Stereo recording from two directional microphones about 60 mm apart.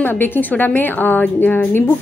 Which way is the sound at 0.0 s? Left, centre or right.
Left.